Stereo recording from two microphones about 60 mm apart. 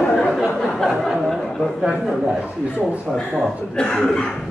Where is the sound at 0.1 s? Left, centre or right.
Centre.